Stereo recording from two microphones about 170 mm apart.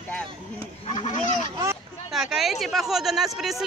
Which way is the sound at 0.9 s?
45° left (ahead or behind).